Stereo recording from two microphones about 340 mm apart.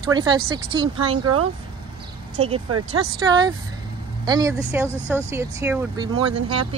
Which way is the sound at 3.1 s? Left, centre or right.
Centre.